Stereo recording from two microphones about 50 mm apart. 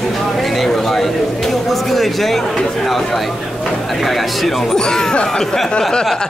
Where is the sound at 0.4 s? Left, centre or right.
Centre.